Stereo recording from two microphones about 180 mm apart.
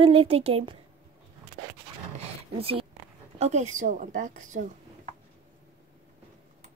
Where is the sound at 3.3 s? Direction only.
40° right (ahead or behind).